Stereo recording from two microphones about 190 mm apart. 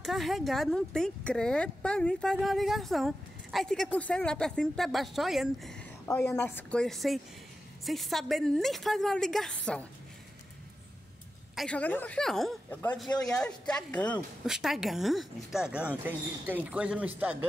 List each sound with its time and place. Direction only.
0.0 s a woman's voice: centre (ahead or behind)
6.0 s a woman's voice: 15° left (ahead or behind)
11.5 s a woman's voice: 5° left (ahead or behind)